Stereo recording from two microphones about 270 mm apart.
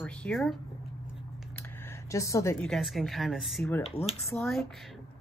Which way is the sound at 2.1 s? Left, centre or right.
Centre.